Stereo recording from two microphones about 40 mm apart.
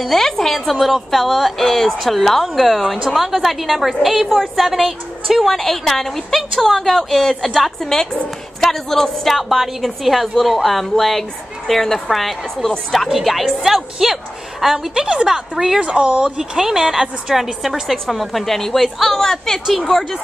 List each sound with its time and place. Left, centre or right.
0.0 s a woman's voice: centre
0.7 s a woman's voice: centre
15.8 s speech: right
16.5 s a woman's voice: centre